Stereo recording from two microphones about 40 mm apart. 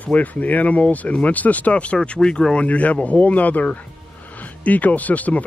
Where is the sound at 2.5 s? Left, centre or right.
Left.